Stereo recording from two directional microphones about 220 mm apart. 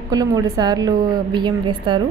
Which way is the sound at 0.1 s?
15° right (ahead or behind).